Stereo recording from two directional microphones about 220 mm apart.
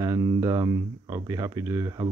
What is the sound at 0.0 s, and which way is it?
Speech, 15° right (ahead or behind).